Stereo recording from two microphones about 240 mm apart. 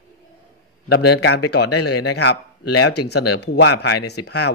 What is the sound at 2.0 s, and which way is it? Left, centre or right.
Speech, left.